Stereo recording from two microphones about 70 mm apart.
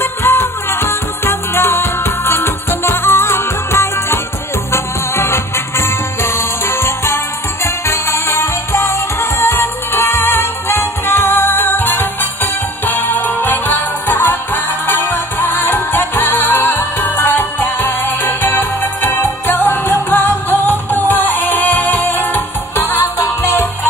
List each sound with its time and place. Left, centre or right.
0.0 s music: left